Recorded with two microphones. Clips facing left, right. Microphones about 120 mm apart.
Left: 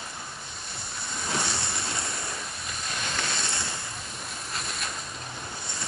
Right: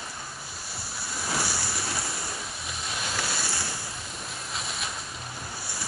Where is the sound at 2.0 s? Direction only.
5° right (ahead or behind).